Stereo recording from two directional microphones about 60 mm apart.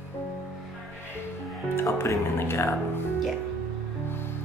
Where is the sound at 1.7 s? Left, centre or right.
Left.